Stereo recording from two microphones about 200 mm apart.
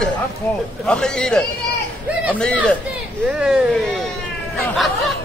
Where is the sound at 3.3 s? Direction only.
Centre (ahead or behind).